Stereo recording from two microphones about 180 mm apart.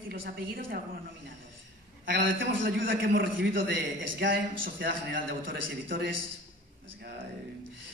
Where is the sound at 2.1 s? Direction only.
90° right.